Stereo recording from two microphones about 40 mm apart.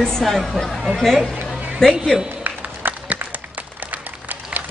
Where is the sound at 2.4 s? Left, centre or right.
Right.